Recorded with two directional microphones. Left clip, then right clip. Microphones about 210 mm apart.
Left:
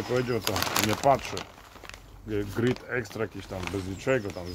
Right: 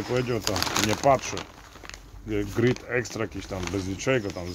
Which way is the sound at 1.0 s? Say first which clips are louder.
Right 2 dB; 25° right (ahead or behind).